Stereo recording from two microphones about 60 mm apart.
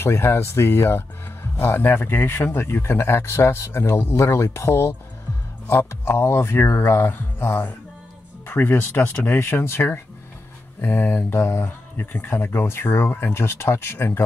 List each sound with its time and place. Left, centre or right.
0.0 s speech: left
8.5 s mantra: left
11.6 s speech: left